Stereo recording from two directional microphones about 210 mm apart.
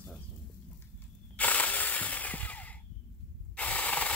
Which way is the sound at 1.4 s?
5° left (ahead or behind).